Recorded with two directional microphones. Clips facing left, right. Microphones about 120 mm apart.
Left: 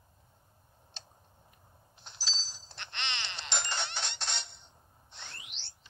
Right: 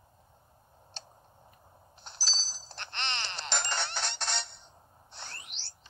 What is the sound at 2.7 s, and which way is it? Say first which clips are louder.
Music: right 3 dB; 35° right (ahead or behind).